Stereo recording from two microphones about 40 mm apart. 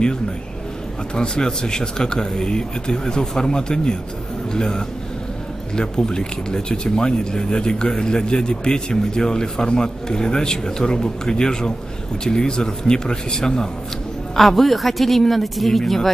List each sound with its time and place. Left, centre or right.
1.1 s speech: left
14.3 s a woman's voice: centre